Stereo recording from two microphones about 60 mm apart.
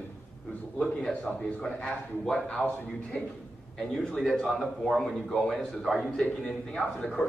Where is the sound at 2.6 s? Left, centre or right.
Left.